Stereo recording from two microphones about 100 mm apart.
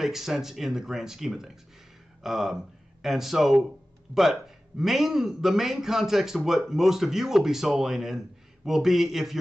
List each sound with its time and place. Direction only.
0.0 s a man's voice: 5° right (ahead or behind)